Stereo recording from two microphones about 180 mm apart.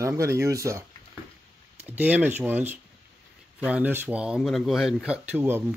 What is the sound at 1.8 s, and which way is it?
Speech, 10° right (ahead or behind).